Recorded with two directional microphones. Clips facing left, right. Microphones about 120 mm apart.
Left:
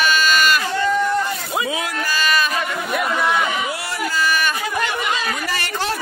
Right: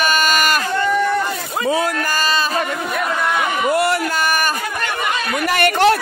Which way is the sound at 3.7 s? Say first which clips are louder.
Right 8 dB; 55° right (ahead or behind).